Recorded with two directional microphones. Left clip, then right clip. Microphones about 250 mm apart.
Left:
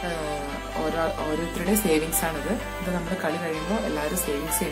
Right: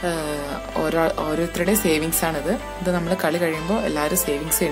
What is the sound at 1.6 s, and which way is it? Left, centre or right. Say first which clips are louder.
Speech: right 5 dB; right.